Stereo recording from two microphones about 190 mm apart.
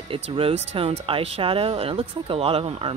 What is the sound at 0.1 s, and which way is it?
Speech, 30° right (ahead or behind).